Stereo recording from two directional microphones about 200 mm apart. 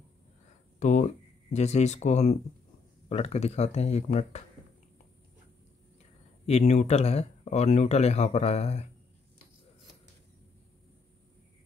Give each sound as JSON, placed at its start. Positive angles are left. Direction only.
{"t": 0.7, "sound": "a sound", "side_deg": 35}
{"t": 1.5, "sound": "speech", "side_deg": 35}
{"t": 6.4, "sound": "speech", "side_deg": 35}